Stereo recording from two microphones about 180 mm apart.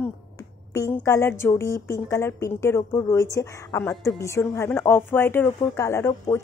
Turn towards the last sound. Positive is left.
turn(degrees=15)  # may be behind; listen again after turning